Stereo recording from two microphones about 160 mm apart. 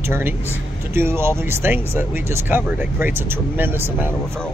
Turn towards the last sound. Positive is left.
turn(degrees=-15)  # may be behind; listen again after turning